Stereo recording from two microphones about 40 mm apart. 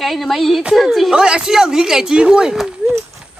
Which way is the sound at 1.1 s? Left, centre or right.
Centre.